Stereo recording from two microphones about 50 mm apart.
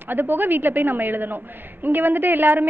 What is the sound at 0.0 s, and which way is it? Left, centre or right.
A woman's voice, right.